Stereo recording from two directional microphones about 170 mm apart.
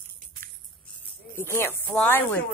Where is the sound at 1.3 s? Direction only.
15° left (ahead or behind).